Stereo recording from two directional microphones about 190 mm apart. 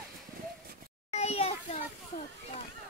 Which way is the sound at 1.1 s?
35° left (ahead or behind).